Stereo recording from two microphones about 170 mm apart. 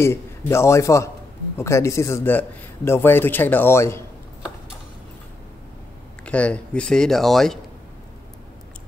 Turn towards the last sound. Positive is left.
turn(degrees=0)  # may be behind; listen again after turning